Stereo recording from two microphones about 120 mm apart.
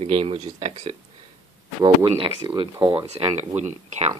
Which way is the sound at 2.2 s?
45° right (ahead or behind).